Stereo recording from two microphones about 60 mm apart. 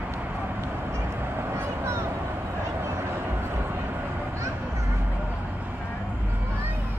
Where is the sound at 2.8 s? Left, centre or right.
Right.